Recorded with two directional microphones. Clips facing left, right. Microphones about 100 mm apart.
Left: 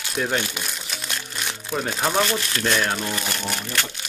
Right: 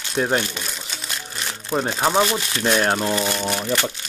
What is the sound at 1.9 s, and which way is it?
Speech, 15° right (ahead or behind).